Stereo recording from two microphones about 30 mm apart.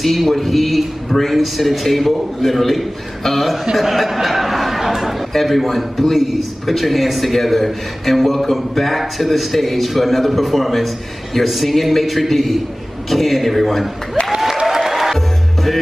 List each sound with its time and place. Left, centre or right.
0.0 s a man's voice: centre
5.3 s a man's voice: centre
14.8 s music: centre
15.1 s music: centre